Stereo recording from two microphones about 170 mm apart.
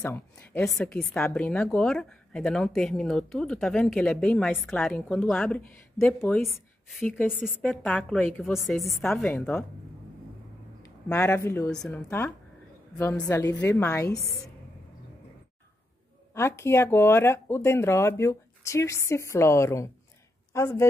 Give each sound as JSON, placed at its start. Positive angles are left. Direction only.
{"t": 0.0, "sound": "speech", "side_deg": 10}
{"t": 0.7, "sound": "a woman's voice", "side_deg": 0}
{"t": 9.3, "sound": "speech", "side_deg": 15}
{"t": 11.1, "sound": "speech", "side_deg": 10}
{"t": 11.7, "sound": "a woman's voice", "side_deg": 5}
{"t": 12.9, "sound": "speech", "side_deg": 15}
{"t": 16.3, "sound": "speech", "side_deg": 15}